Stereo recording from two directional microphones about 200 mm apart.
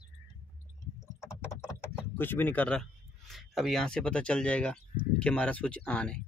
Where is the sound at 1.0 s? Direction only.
15° left (ahead or behind).